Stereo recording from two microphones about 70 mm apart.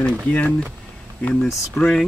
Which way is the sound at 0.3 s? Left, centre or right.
Centre.